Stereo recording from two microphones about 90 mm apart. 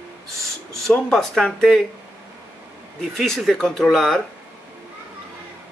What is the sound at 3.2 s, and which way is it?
Speech, centre (ahead or behind).